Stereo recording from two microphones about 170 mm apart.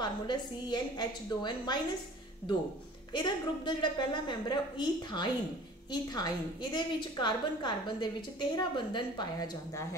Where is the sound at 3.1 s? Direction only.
25° left (ahead or behind).